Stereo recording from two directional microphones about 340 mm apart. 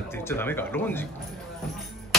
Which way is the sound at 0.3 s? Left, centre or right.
Centre.